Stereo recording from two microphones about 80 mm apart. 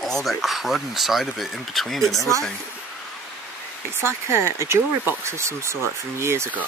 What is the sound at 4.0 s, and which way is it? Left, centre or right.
Speech, right.